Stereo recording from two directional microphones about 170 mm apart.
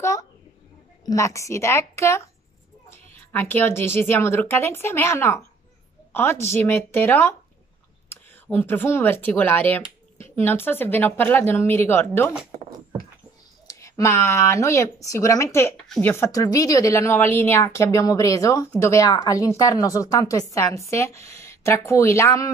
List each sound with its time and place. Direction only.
0.0 s a sound: 20° left (ahead or behind)
1.0 s speech: 20° left (ahead or behind)
13.7 s speech: 20° left (ahead or behind)